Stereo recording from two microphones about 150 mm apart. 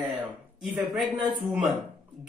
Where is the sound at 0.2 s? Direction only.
10° right (ahead or behind).